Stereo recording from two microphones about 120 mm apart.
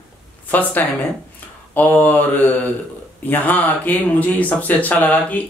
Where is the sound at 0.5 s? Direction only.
15° left (ahead or behind).